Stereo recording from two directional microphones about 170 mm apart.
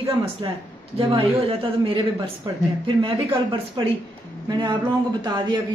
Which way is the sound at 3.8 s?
25° right (ahead or behind).